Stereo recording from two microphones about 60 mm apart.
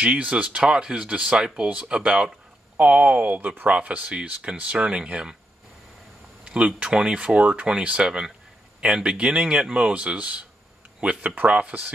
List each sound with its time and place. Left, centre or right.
0.0 s speech: right
6.4 s speech: centre